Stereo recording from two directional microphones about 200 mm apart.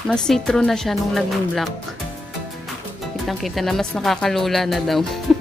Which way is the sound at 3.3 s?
Centre (ahead or behind).